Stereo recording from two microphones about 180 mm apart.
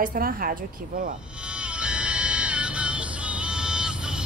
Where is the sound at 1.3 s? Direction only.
5° right (ahead or behind).